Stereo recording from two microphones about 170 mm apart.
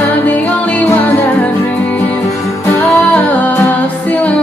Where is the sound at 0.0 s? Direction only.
10° left (ahead or behind).